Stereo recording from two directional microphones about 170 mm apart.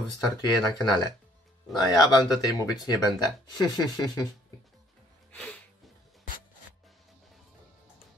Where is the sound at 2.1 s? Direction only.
20° left (ahead or behind).